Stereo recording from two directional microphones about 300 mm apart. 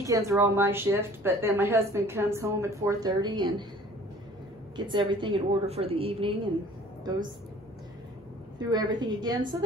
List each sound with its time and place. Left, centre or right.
0.0 s a woman's voice: centre
4.7 s a woman's voice: centre
8.5 s a woman's voice: centre